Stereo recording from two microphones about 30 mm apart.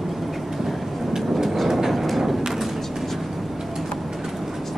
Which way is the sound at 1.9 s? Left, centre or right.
Centre.